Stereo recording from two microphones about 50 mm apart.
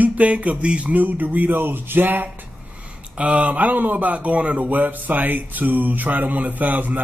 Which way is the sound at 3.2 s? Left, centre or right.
Right.